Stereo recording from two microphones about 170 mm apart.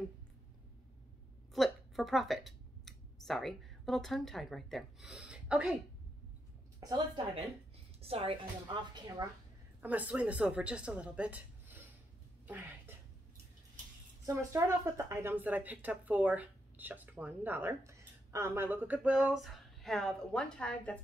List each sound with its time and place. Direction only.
1.5 s speech: centre (ahead or behind)
6.8 s speech: 20° right (ahead or behind)
8.0 s a woman's voice: 35° right (ahead or behind)
9.8 s a woman's voice: 10° right (ahead or behind)
12.4 s a sound: 10° right (ahead or behind)
14.2 s a woman's voice: 15° right (ahead or behind); by 21.0 s 5° left (ahead or behind)